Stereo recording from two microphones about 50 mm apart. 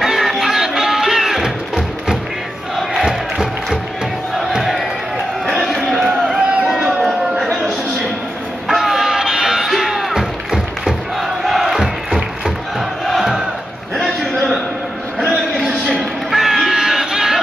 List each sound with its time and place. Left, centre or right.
0.0 s music: centre
2.7 s crowd: centre
3.1 s crowd: centre
5.5 s a sound: centre
8.6 s music: centre
11.8 s crowd: centre
13.2 s battle cry: centre
14.0 s a sound: centre
16.0 s crowd: centre